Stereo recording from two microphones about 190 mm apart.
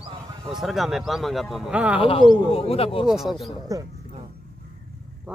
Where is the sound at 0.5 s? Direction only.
Centre (ahead or behind).